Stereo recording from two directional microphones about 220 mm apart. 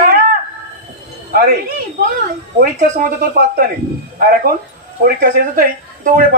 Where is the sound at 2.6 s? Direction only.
40° right (ahead or behind).